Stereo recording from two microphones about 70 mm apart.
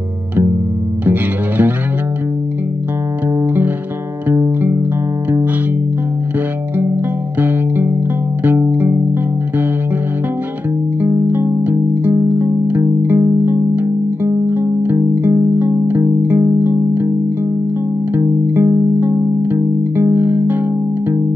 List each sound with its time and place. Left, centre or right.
1.0 s music: right
7.3 s music: right
11.2 s music: right
18.1 s music: right